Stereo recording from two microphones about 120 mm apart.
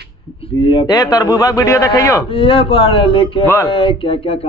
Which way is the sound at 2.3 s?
50° left (ahead or behind).